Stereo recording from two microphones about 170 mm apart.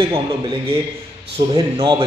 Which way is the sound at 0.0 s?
25° right (ahead or behind).